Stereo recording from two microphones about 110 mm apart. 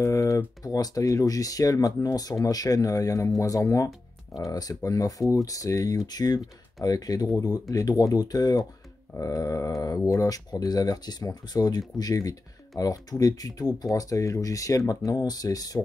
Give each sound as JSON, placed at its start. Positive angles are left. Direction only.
{"t": 0.0, "sound": "speech", "side_deg": 30}